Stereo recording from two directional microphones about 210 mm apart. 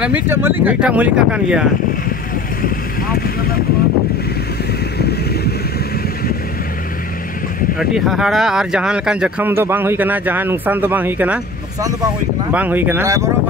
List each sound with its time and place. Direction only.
0.0 s speech: 10° right (ahead or behind)
4.9 s boat: 50° left (ahead or behind)
7.8 s speech: centre (ahead or behind)